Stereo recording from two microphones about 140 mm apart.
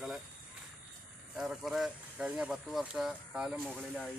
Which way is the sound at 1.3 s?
5° right (ahead or behind).